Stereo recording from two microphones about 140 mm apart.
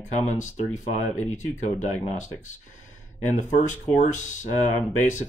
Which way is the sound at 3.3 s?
60° left (ahead or behind).